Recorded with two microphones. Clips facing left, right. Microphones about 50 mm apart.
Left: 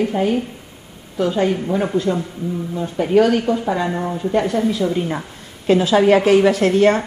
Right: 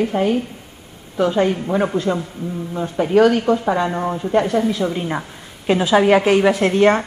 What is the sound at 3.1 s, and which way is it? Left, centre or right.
A woman's voice, centre.